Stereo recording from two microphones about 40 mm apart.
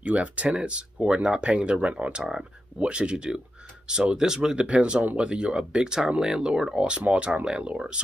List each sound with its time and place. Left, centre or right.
0.0 s speech: right
4.6 s speech: right